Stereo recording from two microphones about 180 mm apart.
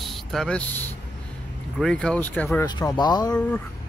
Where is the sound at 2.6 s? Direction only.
20° left (ahead or behind).